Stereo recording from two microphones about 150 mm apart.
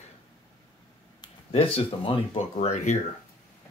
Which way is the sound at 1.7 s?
40° left (ahead or behind).